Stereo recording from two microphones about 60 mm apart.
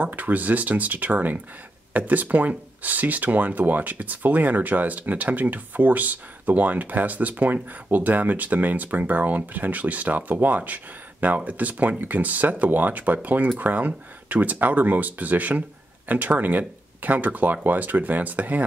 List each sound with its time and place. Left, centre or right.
0.0 s speech: right